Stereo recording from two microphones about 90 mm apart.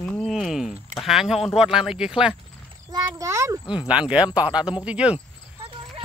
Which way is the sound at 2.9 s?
40° right (ahead or behind).